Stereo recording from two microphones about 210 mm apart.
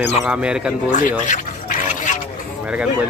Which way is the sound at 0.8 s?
35° left (ahead or behind).